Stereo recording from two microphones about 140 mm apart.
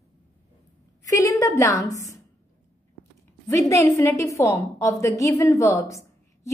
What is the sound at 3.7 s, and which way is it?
A woman's voice, 20° left (ahead or behind).